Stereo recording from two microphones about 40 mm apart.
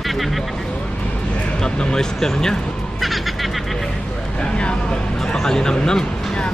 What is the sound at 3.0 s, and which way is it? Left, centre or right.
Fowl, centre.